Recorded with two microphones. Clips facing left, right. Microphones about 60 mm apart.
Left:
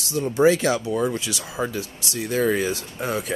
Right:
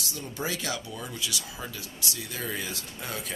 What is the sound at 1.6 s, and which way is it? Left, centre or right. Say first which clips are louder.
Speech: left 10 dB; left.